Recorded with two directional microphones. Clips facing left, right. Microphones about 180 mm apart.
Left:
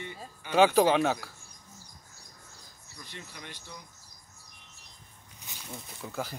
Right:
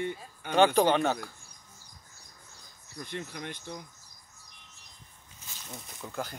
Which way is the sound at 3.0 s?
50° right (ahead or behind).